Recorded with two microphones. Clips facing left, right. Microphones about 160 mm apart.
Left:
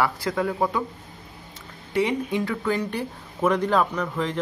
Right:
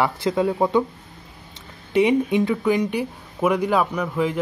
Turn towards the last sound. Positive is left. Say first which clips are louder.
# right 4 dB
turn(degrees=-10)  # may be behind; listen again after turning